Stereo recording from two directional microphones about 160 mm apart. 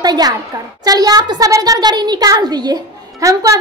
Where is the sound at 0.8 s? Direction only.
25° right (ahead or behind).